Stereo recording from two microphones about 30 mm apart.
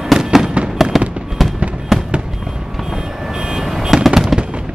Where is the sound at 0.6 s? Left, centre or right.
Right.